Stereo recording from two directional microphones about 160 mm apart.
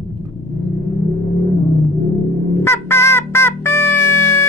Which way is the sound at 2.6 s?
15° left (ahead or behind).